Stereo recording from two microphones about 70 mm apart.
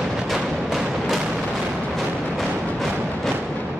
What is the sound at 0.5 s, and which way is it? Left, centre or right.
Music, centre.